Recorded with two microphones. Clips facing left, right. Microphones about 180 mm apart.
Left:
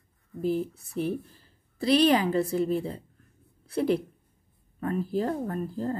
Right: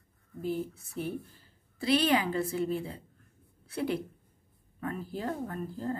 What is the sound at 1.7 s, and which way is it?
A woman's voice, 40° left (ahead or behind).